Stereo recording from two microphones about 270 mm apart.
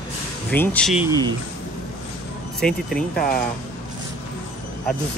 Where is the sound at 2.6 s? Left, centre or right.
Centre.